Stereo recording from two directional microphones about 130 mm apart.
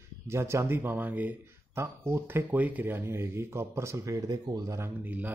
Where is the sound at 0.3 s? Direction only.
20° right (ahead or behind).